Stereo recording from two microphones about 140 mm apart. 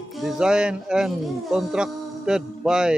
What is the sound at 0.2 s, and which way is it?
Speech, 5° right (ahead or behind).